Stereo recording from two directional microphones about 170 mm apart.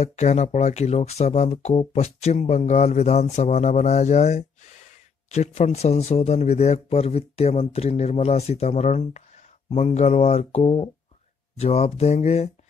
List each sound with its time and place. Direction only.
0.0 s speech: 40° left (ahead or behind)